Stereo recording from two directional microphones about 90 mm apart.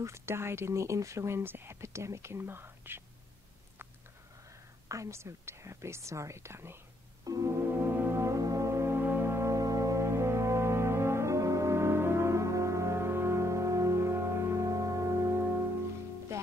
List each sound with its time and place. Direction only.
0.0 s speech: 30° right (ahead or behind)
4.8 s speech: 35° right (ahead or behind)
7.2 s music: 40° right (ahead or behind)